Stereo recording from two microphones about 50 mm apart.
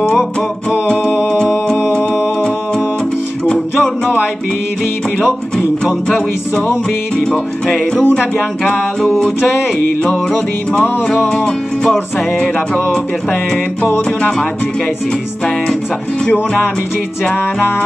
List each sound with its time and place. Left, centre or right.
7.2 s music: centre
8.0 s speech: left
10.7 s music: centre
13.8 s music: left
17.2 s music: left